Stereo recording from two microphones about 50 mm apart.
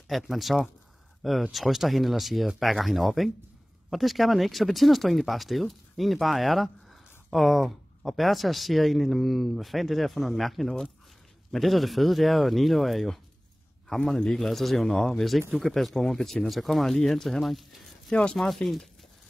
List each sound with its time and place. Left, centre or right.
0.1 s a man's voice: centre
18.1 s speech: centre
18.4 s a man's voice: centre